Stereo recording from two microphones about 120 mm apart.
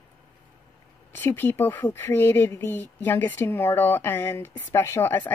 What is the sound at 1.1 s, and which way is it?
Speech, 20° left (ahead or behind).